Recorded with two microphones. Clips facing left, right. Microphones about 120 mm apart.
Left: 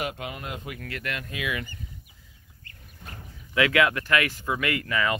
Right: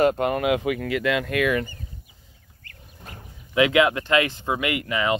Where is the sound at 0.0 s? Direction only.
50° right (ahead or behind).